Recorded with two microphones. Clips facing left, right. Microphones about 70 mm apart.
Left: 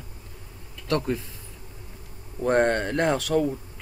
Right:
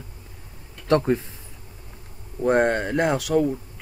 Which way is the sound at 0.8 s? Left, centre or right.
Right.